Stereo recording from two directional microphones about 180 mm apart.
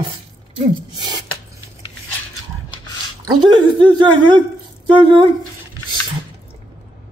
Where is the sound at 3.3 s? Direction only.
25° right (ahead or behind).